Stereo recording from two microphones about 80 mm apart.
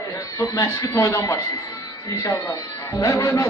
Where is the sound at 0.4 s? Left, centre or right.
Left.